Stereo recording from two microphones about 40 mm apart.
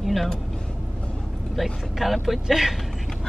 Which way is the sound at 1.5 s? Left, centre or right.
Centre.